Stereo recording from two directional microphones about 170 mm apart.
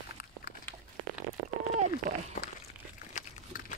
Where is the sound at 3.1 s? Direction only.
50° left (ahead or behind).